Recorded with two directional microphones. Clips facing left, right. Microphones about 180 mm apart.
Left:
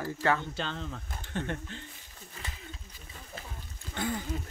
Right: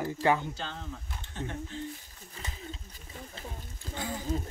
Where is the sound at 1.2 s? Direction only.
65° left (ahead or behind).